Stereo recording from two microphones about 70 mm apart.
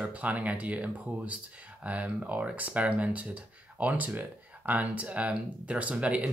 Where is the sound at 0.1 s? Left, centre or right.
Right.